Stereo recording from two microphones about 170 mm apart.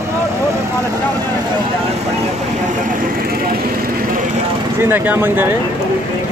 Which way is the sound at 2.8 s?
60° right (ahead or behind).